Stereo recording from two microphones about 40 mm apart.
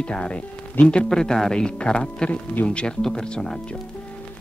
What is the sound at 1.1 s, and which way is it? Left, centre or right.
A man's voice, centre.